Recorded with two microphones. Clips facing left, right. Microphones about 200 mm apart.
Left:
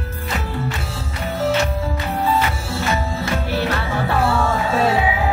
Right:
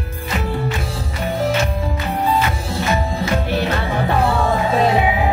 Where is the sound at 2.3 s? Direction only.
15° right (ahead or behind).